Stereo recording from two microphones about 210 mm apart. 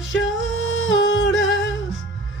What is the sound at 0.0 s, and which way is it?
Music, 60° left (ahead or behind).